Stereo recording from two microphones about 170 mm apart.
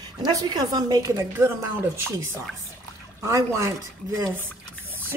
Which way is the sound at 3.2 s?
15° right (ahead or behind).